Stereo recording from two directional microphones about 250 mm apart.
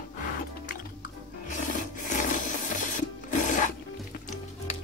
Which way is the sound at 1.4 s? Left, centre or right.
Left.